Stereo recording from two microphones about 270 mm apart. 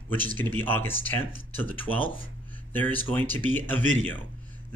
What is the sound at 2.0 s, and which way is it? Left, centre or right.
Speech, centre.